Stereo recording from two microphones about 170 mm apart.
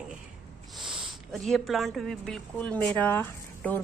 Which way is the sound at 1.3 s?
Centre (ahead or behind).